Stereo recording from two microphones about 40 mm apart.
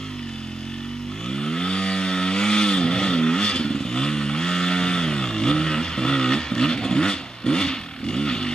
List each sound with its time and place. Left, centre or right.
1.3 s chainsaw: centre